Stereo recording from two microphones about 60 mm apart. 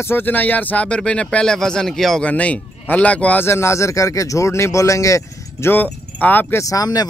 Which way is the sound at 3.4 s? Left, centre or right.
Left.